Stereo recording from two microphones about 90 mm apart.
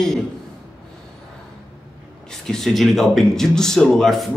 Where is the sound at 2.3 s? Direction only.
5° left (ahead or behind).